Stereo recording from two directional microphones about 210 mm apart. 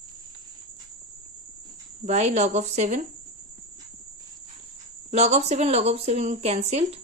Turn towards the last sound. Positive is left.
turn(degrees=-30)  # may be behind; listen again after turning